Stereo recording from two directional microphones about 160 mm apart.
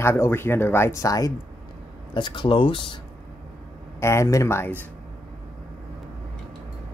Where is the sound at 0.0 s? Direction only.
15° left (ahead or behind); by 3.0 s 30° left (ahead or behind).